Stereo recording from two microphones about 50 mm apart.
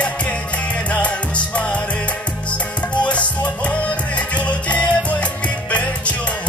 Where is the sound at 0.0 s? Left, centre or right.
Left.